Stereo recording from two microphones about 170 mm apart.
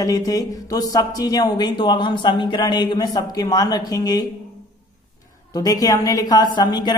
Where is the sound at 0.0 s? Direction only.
20° left (ahead or behind).